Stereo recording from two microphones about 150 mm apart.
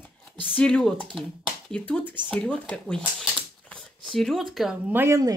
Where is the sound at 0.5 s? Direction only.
5° left (ahead or behind).